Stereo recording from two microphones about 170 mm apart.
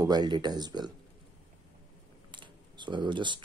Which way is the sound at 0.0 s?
25° right (ahead or behind).